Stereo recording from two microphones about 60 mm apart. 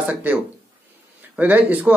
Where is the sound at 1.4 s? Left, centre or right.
Right.